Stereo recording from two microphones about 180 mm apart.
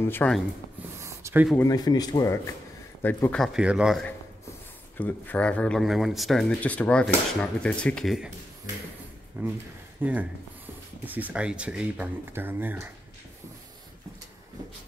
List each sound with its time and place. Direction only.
0.1 s speech: 10° left (ahead or behind)
1.0 s a sound: 15° right (ahead or behind)
1.6 s a man's voice: 20° left (ahead or behind); by 4.1 s centre (ahead or behind)
4.9 s a man's voice: 10° left (ahead or behind)
9.4 s speech: 10° right (ahead or behind)